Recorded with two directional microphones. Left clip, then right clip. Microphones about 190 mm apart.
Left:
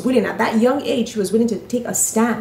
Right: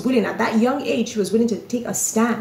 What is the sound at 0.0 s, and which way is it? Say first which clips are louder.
A woman's voice: left 2 dB; 10° left (ahead or behind).